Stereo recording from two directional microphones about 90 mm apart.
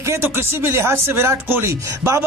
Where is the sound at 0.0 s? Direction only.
30° right (ahead or behind).